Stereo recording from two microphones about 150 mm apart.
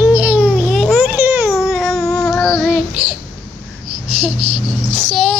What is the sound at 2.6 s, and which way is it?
Child singing, 5° right (ahead or behind).